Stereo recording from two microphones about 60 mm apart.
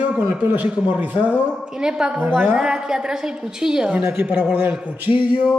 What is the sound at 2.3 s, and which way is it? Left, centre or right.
Speech, right.